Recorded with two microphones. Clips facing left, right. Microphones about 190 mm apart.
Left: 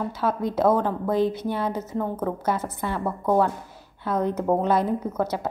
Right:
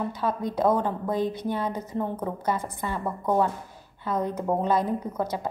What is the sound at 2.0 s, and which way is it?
Speech, 10° right (ahead or behind).